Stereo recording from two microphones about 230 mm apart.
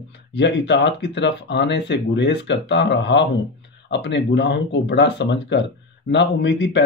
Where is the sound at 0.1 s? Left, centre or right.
Left.